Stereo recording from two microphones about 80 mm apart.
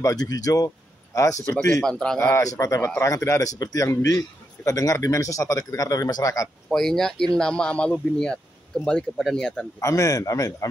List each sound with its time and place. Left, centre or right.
0.0 s a man's voice: left
1.8 s speech: centre
2.3 s a man's voice: left
6.7 s speech: centre
9.8 s a man's voice: left